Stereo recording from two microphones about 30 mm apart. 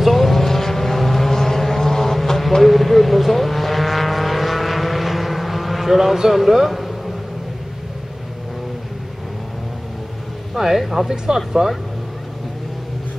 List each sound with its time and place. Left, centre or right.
0.0 s vehicle: centre
6.3 s speech: centre
10.5 s speech: centre